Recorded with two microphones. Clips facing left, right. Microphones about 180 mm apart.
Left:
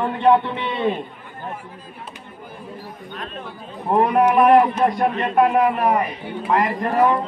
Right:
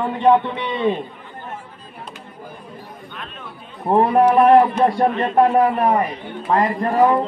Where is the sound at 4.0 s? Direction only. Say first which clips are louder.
Right 2 dB; 30° right (ahead or behind).